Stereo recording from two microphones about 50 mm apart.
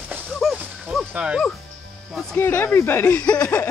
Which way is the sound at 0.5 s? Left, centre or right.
Right.